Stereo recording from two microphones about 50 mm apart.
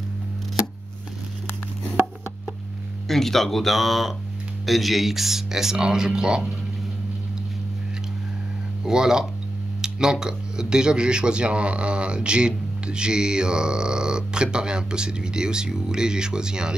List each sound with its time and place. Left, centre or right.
3.1 s speech: centre
8.8 s speech: centre